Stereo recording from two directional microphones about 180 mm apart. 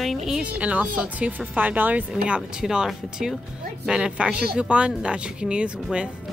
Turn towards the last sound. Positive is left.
turn(degrees=-5)  # may be behind; listen again after turning